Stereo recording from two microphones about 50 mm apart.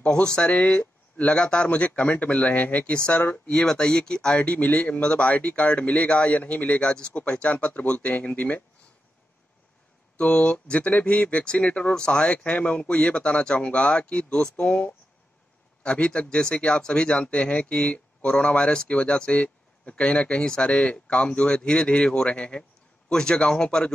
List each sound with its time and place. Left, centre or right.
0.1 s speech: centre; by 3.6 s left
3.6 s speech: centre
4.4 s speech: left
8.1 s speech: left
10.1 s speech: left
11.9 s a man's voice: centre